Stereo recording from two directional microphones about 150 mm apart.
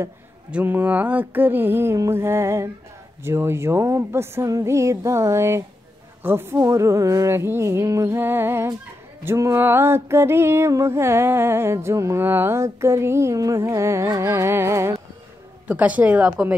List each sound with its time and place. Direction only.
0.5 s music: 10° right (ahead or behind)
3.3 s speech: 15° right (ahead or behind)
6.2 s music: 15° right (ahead or behind)